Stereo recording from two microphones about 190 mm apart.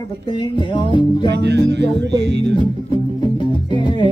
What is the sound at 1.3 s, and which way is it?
Music, 65° right (ahead or behind).